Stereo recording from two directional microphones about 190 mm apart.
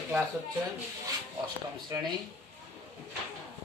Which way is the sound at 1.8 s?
25° right (ahead or behind).